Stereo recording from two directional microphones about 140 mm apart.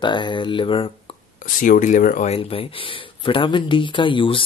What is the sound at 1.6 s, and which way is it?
Speech, 65° left (ahead or behind).